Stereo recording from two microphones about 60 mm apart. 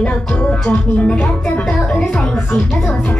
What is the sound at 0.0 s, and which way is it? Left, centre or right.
Speech, left.